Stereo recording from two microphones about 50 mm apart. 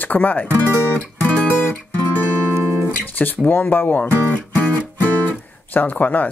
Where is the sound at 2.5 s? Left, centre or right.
Right.